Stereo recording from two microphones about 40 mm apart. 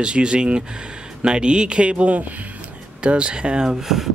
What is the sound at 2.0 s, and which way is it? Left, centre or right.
Speech, right.